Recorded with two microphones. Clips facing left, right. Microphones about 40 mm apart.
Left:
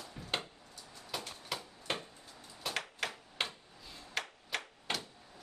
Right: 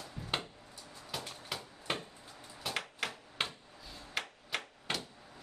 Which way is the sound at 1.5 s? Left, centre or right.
Centre.